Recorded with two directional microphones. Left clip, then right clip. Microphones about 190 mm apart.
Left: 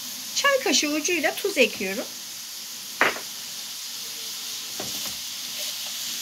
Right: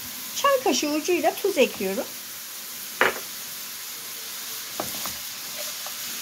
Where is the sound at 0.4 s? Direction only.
35° right (ahead or behind).